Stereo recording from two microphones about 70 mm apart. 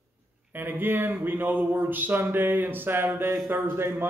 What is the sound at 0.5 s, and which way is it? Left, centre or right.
A man's voice, right.